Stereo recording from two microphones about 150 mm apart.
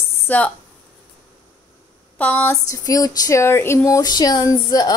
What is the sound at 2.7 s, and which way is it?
Speech, 25° left (ahead or behind).